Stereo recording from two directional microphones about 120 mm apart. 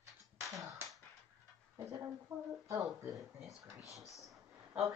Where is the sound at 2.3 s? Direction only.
30° right (ahead or behind).